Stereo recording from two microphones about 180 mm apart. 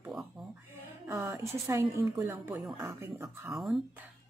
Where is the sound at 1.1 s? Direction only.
15° right (ahead or behind).